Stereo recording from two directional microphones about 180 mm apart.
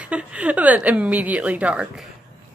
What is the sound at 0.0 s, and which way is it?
A woman's voice, 5° right (ahead or behind).